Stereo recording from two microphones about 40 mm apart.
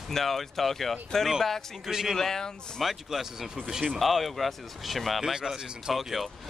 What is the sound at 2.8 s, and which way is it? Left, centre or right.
Speech, centre.